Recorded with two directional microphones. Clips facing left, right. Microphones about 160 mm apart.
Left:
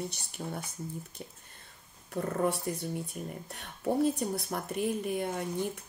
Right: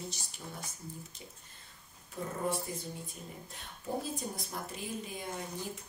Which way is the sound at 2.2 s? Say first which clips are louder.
Left 5 dB; 70° left (ahead or behind).